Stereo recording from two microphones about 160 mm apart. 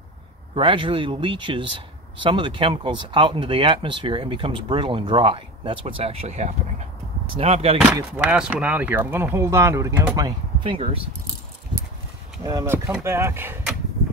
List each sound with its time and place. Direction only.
0.6 s speech: 35° right (ahead or behind)
8.1 s speech: 5° right (ahead or behind)
10.1 s speech: 30° right (ahead or behind)
12.4 s speech: 20° right (ahead or behind)